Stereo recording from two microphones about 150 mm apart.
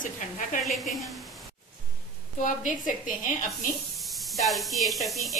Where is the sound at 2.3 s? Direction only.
60° left (ahead or behind).